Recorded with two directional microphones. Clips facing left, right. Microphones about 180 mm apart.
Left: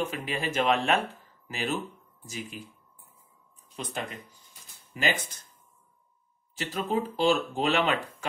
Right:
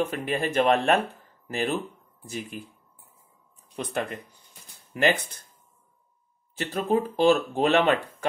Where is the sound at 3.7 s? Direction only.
60° right (ahead or behind).